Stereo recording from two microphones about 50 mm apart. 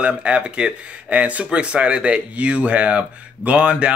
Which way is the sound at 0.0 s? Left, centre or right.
Right.